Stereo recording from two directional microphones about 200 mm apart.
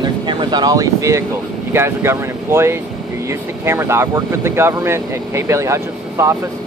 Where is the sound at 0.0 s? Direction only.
20° right (ahead or behind).